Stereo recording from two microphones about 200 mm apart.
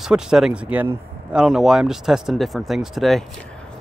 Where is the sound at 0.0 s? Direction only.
5° right (ahead or behind).